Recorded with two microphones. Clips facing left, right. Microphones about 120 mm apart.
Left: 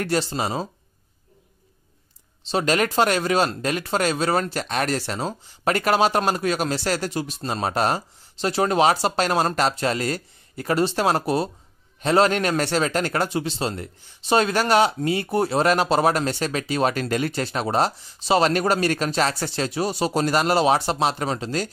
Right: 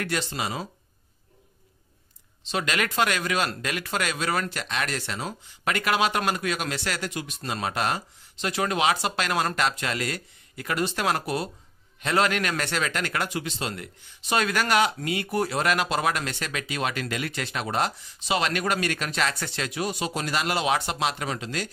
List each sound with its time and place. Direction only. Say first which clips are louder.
0.0 s a man's voice: left 6 dB; 35° left (ahead or behind)
2.4 s a man's voice: left 6 dB; 35° left (ahead or behind)